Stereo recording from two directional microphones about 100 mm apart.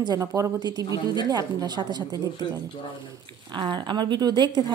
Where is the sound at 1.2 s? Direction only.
40° right (ahead or behind).